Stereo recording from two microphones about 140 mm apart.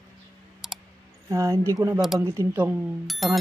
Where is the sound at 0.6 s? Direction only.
Centre (ahead or behind).